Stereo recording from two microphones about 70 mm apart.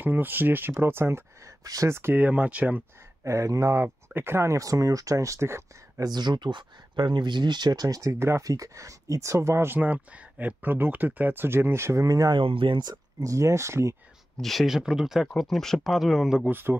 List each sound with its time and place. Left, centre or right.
0.0 s speech: right
1.6 s speech: right
1.9 s speech: right
2.1 s speech: right
3.3 s speech: right
6.0 s speech: right
8.5 s speech: right
9.7 s speech: right
13.2 s speech: right
14.3 s speech: centre
16.4 s speech: right